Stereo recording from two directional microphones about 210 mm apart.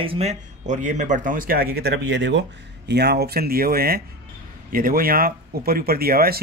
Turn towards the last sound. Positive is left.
turn(degrees=-45)  # may be behind; listen again after turning